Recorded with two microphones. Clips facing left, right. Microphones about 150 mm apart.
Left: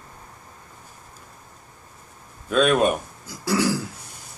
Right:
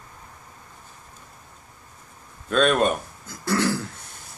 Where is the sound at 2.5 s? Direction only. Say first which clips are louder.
Left 1 dB; 5° left (ahead or behind).